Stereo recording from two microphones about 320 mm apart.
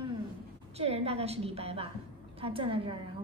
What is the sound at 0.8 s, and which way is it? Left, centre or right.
A woman's voice, centre.